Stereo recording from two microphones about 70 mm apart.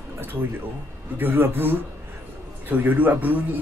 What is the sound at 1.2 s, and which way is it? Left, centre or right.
A man's voice, right.